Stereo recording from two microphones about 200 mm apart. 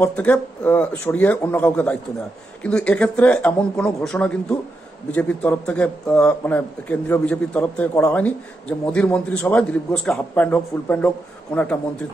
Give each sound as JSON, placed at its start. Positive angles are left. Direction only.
{"t": 0.0, "sound": "a man's voice", "side_deg": 5}